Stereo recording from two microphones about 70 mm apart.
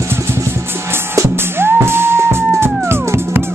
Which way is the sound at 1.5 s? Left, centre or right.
Right.